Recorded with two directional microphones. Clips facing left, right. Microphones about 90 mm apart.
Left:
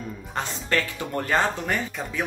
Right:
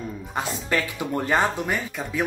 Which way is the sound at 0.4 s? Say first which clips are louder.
Right 1 dB; 10° right (ahead or behind).